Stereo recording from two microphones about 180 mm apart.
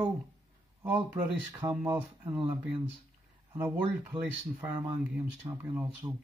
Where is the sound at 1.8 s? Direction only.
15° right (ahead or behind).